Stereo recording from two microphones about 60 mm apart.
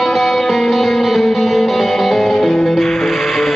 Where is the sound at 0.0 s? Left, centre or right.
Centre.